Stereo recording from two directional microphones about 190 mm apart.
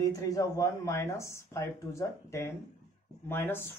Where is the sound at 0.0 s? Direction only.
15° left (ahead or behind).